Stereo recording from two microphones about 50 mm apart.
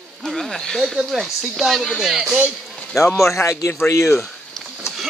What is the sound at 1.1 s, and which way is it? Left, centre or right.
A man's voice, centre.